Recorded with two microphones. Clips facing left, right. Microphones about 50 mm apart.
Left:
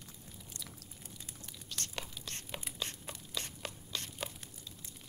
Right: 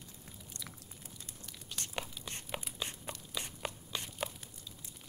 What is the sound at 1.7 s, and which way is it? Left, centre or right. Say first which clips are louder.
Whispering: right 2 dB; centre.